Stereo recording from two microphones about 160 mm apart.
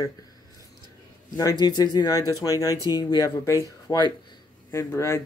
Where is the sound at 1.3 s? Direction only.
25° left (ahead or behind).